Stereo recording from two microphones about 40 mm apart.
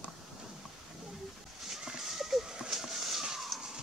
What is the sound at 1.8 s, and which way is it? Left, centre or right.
Horse, centre.